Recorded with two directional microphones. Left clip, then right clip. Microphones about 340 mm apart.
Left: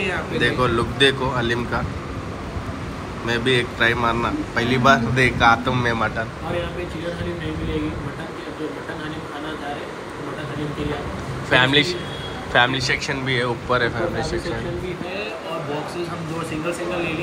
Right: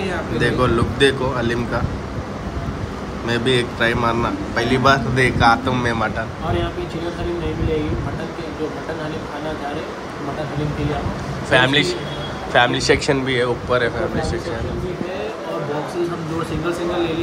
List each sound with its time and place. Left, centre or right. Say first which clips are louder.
0.4 s a man's voice: right 2 dB; centre
3.3 s a man's voice: right 1 dB; centre
11.5 s a man's voice: right 1 dB; centre